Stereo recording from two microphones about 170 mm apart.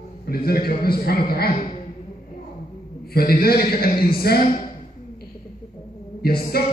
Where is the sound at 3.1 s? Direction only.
65° left (ahead or behind).